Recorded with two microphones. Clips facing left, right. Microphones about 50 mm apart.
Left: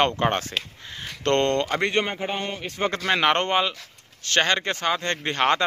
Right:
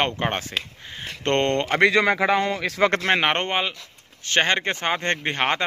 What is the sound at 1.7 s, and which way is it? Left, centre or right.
Speech, right.